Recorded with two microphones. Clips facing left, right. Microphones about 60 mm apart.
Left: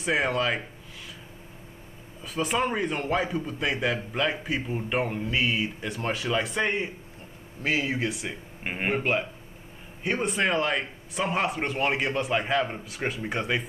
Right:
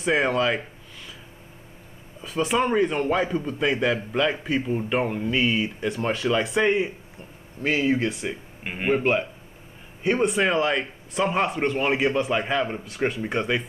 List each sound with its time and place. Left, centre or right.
0.0 s a man's voice: centre
2.2 s a man's voice: centre
8.6 s a man's voice: left
10.0 s a man's voice: centre